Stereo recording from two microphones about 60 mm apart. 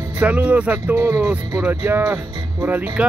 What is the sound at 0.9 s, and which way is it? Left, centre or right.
Speech, right.